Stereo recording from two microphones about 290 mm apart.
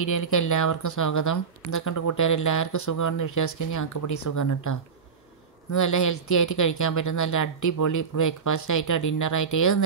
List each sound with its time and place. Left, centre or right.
0.0 s speech: left